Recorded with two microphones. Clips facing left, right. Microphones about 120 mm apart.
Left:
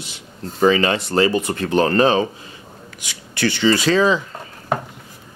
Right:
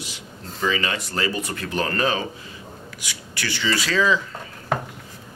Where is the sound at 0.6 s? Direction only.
40° left (ahead or behind).